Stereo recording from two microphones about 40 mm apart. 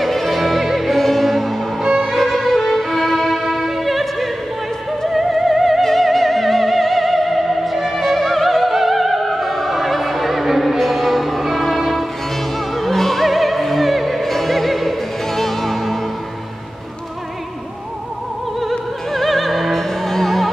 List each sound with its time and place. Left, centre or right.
0.0 s music: centre
2.0 s violin: centre
5.2 s music: centre
12.5 s opera: centre
18.6 s opera: centre